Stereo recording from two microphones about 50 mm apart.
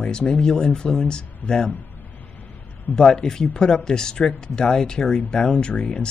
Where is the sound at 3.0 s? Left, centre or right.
Centre.